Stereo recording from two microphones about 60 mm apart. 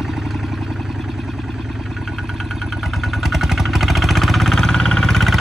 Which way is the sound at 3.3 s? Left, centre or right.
Centre.